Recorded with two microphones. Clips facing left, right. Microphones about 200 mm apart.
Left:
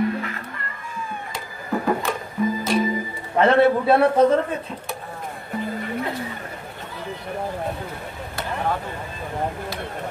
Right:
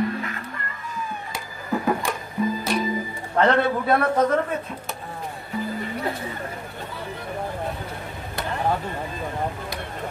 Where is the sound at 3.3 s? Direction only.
25° left (ahead or behind).